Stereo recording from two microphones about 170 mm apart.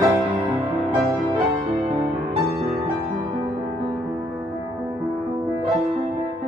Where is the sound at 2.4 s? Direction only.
10° right (ahead or behind).